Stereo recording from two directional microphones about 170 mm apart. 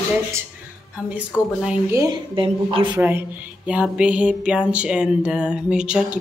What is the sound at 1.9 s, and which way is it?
A woman's voice, 25° right (ahead or behind).